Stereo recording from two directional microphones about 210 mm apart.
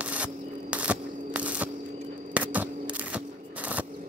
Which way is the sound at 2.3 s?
5° right (ahead or behind).